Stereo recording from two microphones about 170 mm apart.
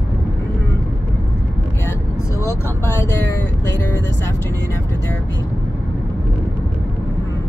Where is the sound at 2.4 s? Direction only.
15° left (ahead or behind).